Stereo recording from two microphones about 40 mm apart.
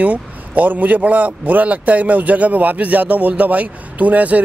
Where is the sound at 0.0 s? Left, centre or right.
Right.